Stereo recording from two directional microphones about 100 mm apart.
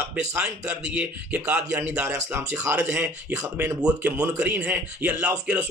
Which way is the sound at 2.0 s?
25° right (ahead or behind).